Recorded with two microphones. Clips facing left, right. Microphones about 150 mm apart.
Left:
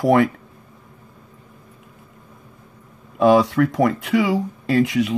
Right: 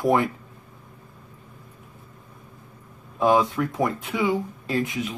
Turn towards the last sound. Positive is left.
turn(degrees=80)